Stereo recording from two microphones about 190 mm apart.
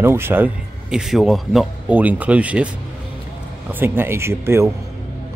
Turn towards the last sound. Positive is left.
turn(degrees=-15)  # may be behind; listen again after turning